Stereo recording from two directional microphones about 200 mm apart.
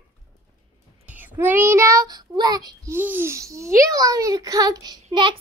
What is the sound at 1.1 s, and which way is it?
Child singing, 10° right (ahead or behind).